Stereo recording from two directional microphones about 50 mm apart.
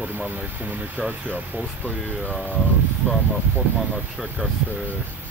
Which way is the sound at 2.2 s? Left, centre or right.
Right.